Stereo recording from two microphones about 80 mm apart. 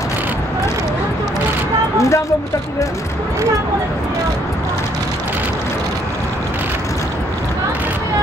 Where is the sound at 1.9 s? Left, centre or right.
Left.